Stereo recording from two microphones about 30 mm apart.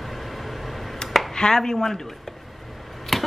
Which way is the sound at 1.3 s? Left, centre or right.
Left.